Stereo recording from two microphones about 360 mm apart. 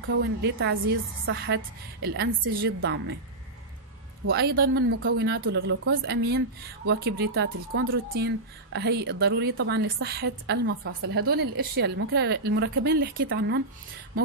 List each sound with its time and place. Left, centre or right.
0.0 s a woman's voice: right
4.3 s a woman's voice: right